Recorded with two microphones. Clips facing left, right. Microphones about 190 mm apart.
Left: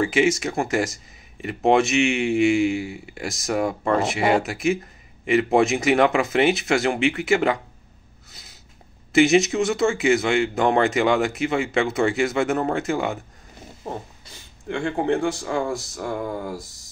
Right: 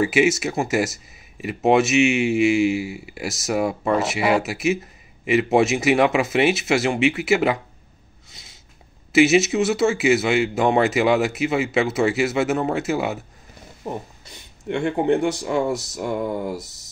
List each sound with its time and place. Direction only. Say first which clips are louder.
0.0 s speech: right 1 dB; 10° right (ahead or behind)
9.1 s speech: right 1 dB; 5° right (ahead or behind)
14.3 s speech: right 3 dB; 20° right (ahead or behind)
16.6 s a sound: even; 70° right (ahead or behind)